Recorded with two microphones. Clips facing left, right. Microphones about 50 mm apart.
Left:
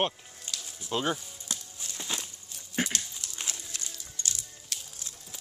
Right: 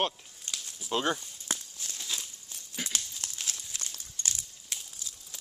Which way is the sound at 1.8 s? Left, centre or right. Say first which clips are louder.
Left 2 dB; left.